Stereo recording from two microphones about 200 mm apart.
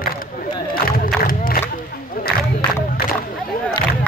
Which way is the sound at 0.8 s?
45° left (ahead or behind).